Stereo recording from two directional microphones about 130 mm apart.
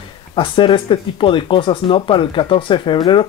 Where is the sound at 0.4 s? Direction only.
40° left (ahead or behind).